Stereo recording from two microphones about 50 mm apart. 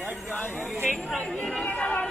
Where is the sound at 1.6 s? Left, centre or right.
Left.